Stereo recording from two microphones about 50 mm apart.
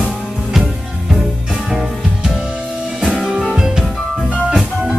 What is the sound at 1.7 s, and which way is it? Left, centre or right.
Music, centre.